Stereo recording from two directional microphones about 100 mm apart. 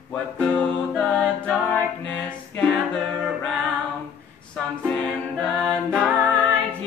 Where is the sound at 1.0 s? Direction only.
10° left (ahead or behind).